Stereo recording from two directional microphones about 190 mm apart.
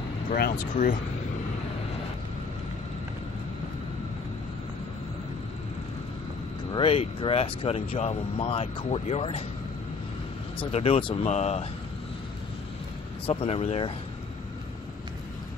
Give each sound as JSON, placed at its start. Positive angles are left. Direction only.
{"t": 0.3, "sound": "speech", "side_deg": 50}
{"t": 6.7, "sound": "speech", "side_deg": 30}
{"t": 10.6, "sound": "speech", "side_deg": 30}
{"t": 13.3, "sound": "speech", "side_deg": 30}